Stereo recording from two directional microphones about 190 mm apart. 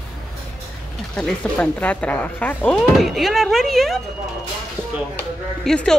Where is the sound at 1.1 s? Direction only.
5° left (ahead or behind).